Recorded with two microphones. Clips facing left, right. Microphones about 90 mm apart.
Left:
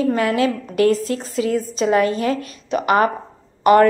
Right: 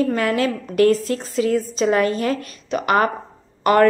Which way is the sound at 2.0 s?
40° right (ahead or behind).